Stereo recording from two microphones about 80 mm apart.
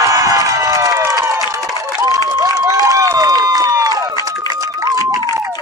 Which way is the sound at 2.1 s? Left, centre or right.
Right.